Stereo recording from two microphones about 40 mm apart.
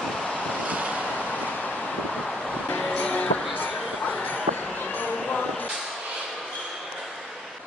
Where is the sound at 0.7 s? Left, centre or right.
Right.